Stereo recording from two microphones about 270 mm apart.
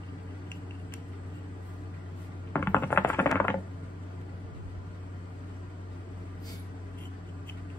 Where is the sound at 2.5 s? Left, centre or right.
Centre.